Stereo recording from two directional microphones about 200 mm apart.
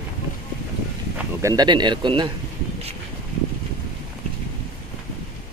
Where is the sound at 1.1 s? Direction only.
15° right (ahead or behind).